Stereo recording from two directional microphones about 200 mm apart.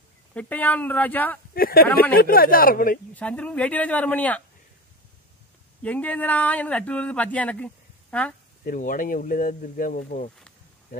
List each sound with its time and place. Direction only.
0.3 s speech: 5° left (ahead or behind)
1.5 s speech: 50° left (ahead or behind)
1.9 s speech: 10° left (ahead or behind)
2.1 s speech: 45° left (ahead or behind)
3.2 s speech: 5° left (ahead or behind)
5.8 s speech: 5° left (ahead or behind)
8.6 s speech: 40° left (ahead or behind)